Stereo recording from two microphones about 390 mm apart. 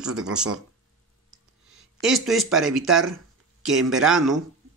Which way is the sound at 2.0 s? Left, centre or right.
Centre.